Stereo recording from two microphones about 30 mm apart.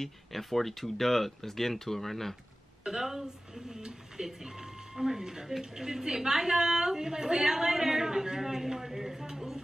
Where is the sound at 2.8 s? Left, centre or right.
Centre.